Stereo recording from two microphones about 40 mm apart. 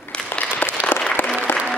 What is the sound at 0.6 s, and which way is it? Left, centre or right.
Applause, left.